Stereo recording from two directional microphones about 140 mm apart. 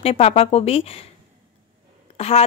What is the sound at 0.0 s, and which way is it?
Speech, 45° left (ahead or behind).